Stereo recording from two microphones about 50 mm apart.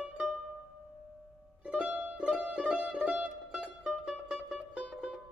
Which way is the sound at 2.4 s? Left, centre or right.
Right.